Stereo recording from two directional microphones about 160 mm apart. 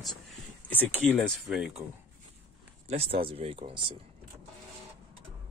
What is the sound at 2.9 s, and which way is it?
Speech, 35° right (ahead or behind).